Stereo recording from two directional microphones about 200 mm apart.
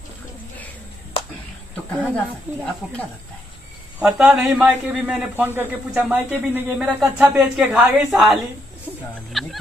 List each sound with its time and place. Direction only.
1.1 s a sound: 25° left (ahead or behind)
2.1 s speech: 5° left (ahead or behind)
4.0 s a man's voice: 5° right (ahead or behind)